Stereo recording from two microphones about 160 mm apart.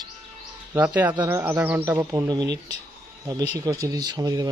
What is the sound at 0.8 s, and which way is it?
Speech, 10° right (ahead or behind).